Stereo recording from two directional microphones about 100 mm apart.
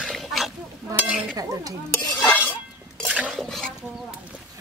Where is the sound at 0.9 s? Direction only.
10° right (ahead or behind).